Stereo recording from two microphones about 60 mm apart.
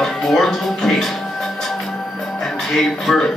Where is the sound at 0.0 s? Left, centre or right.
Centre.